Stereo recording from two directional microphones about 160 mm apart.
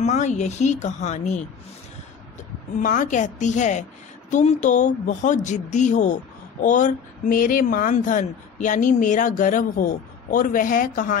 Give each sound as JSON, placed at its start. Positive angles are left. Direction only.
{"t": 0.0, "sound": "speech", "side_deg": 45}
{"t": 2.8, "sound": "speech", "side_deg": 55}